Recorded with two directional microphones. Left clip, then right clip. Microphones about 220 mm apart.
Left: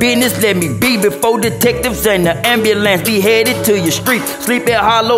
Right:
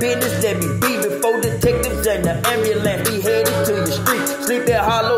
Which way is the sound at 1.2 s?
30° left (ahead or behind).